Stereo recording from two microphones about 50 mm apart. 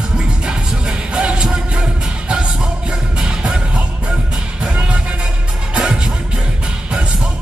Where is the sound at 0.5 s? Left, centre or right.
Centre.